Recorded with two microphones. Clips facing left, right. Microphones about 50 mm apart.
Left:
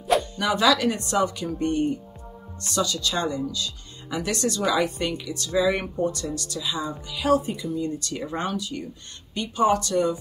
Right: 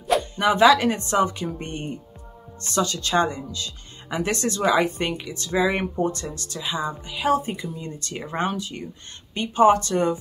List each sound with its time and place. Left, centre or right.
0.0 s dog: centre
0.4 s speech: right